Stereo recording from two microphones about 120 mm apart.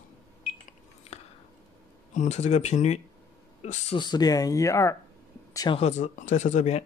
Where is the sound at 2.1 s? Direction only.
70° left (ahead or behind).